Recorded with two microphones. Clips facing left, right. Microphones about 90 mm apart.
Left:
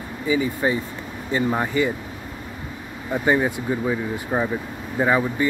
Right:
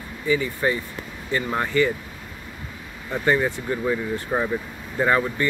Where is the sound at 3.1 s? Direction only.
15° left (ahead or behind).